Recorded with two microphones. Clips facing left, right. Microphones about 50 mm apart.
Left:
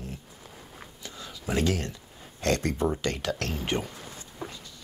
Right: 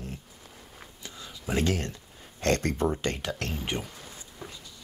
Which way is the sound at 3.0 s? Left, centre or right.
Right.